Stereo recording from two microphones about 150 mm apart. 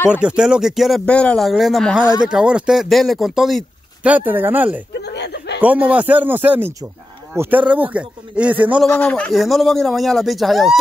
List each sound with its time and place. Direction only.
0.1 s speech: 5° right (ahead or behind)
5.0 s chuckle: 90° left
5.6 s a man's voice: 10° right (ahead or behind)
8.8 s speech: 10° left (ahead or behind)